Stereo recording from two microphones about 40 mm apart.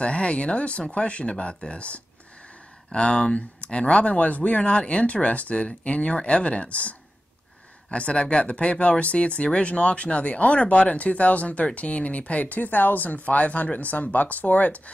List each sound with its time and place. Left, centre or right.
0.0 s speech: left
3.3 s speech: left